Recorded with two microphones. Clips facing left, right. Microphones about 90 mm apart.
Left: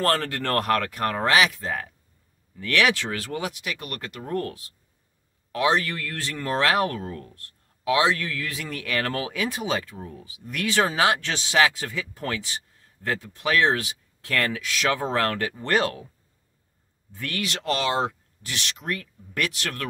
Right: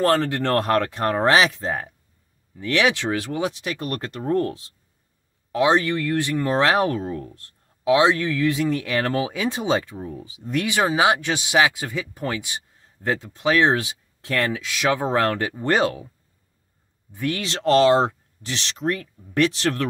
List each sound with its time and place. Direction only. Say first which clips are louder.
0.0 s speech: right 4 dB; 20° right (ahead or behind)
10.7 s speech: right 2 dB; 15° right (ahead or behind)
17.1 s speech: right 5 dB; 20° right (ahead or behind)